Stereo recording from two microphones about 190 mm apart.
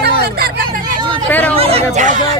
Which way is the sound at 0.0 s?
55° right (ahead or behind).